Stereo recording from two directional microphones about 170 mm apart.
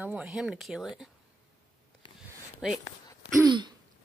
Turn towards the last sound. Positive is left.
turn(degrees=-25)  # may be behind; listen again after turning